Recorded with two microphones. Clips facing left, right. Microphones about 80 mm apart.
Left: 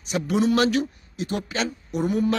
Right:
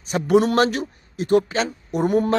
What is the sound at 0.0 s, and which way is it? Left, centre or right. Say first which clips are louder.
A man's voice: right 5 dB; right.